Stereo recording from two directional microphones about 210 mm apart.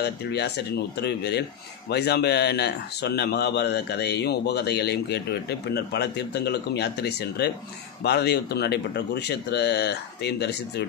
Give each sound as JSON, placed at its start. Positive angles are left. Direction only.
{"t": 0.0, "sound": "speech", "side_deg": 55}